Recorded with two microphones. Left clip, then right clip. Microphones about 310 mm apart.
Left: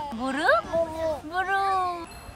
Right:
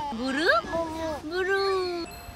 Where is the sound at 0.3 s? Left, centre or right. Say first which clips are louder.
Left 1 dB; centre.